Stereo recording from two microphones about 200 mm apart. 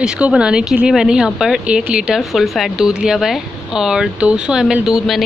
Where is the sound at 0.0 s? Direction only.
5° right (ahead or behind).